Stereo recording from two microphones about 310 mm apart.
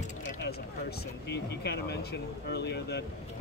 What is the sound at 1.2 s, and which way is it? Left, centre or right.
Speech, left.